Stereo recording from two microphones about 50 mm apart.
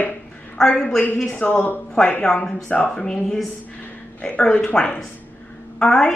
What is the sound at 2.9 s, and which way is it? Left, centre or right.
Speech, centre.